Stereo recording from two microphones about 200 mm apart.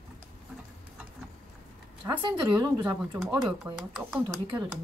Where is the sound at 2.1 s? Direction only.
25° right (ahead or behind).